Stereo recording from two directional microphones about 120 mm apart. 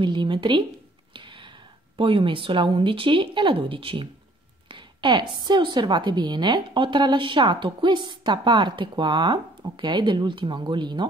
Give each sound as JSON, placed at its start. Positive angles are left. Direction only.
{"t": 0.0, "sound": "a woman's voice", "side_deg": -40}
{"t": 1.1, "sound": "a sound", "side_deg": -40}
{"t": 2.0, "sound": "a woman's voice", "side_deg": -45}